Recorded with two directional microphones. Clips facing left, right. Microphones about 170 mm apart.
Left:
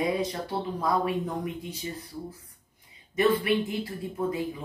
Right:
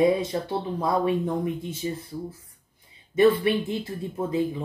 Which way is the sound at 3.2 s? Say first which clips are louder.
Right 4 dB; 25° right (ahead or behind).